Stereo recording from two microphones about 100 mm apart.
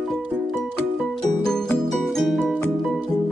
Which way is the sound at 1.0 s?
5° left (ahead or behind).